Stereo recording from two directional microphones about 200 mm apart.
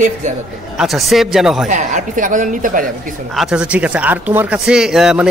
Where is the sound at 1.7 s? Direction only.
40° right (ahead or behind).